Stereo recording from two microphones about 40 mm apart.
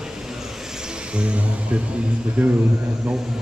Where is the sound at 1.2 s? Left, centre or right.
Right.